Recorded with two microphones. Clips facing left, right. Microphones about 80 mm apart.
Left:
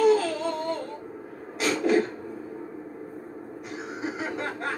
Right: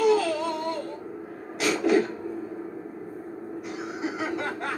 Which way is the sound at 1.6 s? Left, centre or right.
Left.